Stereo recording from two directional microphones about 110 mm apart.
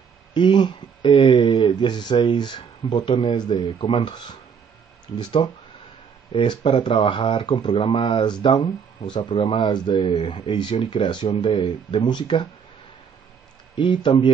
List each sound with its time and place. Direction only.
0.3 s speech: 45° left (ahead or behind)
13.7 s speech: 45° left (ahead or behind)